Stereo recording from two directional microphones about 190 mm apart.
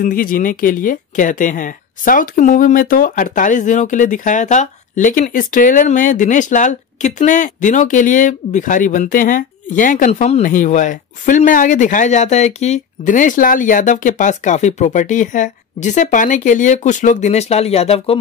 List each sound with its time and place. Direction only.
0.0 s speech: 45° left (ahead or behind); by 18.1 s 30° left (ahead or behind)